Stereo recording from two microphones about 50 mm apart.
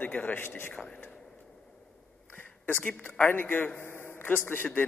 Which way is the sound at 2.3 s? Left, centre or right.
Left.